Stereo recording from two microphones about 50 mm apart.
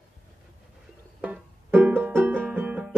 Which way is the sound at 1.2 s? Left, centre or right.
Right.